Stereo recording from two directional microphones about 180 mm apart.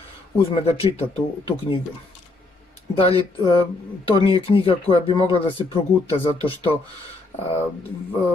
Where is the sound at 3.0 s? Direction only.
35° left (ahead or behind).